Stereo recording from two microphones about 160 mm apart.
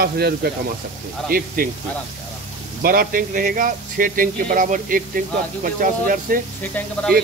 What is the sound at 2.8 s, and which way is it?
Speech, 65° right (ahead or behind).